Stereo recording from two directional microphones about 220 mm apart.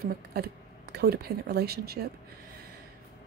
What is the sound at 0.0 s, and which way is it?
Speech, 45° right (ahead or behind).